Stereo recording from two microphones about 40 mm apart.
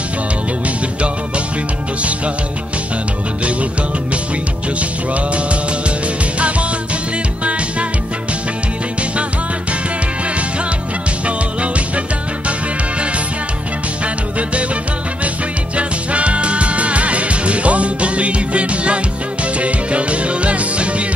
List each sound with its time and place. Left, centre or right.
5.1 s music: right
15.7 s music: right